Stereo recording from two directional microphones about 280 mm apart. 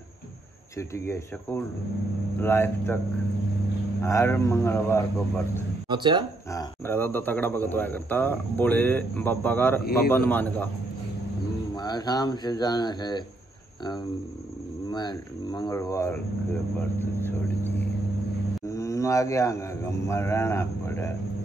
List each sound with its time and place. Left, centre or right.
0.7 s speech: centre
4.0 s speech: centre
5.9 s speech: centre
6.5 s a man's voice: centre
11.7 s speech: centre
14.9 s speech: centre